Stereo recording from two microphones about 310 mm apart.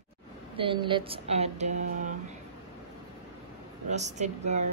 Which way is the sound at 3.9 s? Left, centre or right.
Right.